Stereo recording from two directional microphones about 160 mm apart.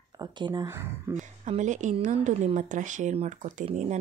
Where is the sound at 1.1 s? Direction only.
50° right (ahead or behind).